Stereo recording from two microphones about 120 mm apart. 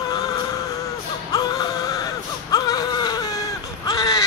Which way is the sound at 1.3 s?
30° left (ahead or behind).